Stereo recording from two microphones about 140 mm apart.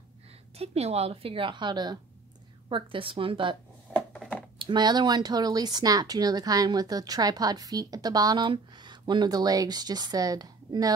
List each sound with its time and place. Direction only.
0.6 s a woman's voice: 45° right (ahead or behind)
4.6 s speech: 35° right (ahead or behind)